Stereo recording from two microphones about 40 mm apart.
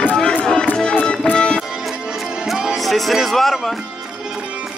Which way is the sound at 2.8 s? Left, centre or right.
Centre.